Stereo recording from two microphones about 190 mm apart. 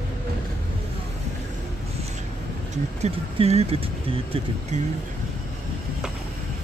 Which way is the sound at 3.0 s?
35° right (ahead or behind).